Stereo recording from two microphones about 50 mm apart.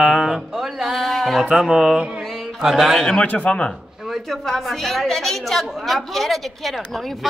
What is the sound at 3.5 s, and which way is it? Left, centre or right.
Speech, centre.